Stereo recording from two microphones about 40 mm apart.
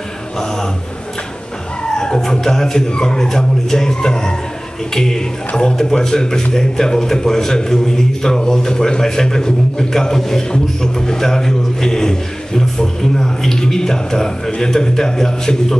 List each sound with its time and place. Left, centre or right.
2.0 s a man's voice: centre